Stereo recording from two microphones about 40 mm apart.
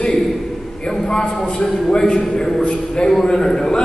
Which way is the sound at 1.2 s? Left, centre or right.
Left.